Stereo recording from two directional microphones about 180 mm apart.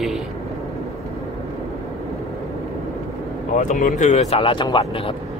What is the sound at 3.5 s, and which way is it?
Speech, 40° left (ahead or behind).